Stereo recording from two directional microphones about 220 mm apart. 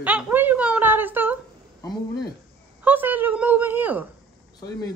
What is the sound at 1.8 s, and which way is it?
Speech, 15° left (ahead or behind).